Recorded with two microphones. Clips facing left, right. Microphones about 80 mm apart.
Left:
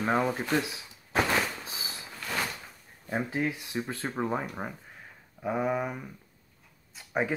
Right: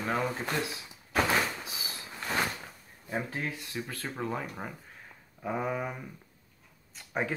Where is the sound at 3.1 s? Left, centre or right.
Centre.